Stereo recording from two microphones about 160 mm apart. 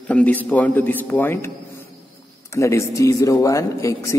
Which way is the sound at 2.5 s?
20° left (ahead or behind).